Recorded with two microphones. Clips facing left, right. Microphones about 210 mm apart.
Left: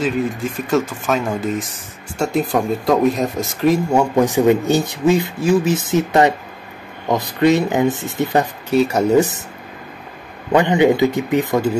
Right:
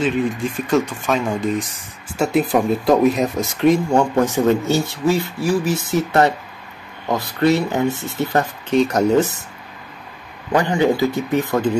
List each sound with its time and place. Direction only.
0.0 s speech: centre (ahead or behind)
10.5 s speech: 20° left (ahead or behind)